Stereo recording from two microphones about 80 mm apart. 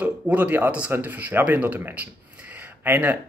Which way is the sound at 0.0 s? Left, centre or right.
Right.